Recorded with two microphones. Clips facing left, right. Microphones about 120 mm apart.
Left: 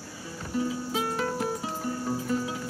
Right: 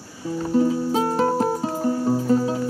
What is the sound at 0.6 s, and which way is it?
Music, 35° right (ahead or behind).